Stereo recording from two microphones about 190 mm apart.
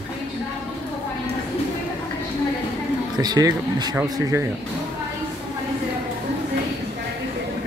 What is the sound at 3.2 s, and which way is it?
Speech, 20° right (ahead or behind).